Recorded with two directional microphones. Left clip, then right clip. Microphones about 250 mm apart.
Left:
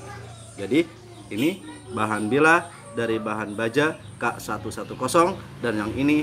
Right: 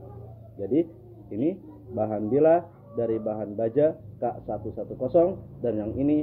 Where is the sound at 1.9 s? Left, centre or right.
Left.